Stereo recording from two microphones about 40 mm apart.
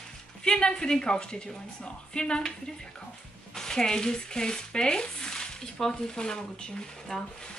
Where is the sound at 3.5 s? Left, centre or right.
Centre.